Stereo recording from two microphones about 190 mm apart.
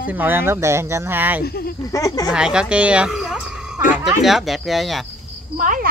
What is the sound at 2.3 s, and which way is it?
A child's voice, 5° right (ahead or behind).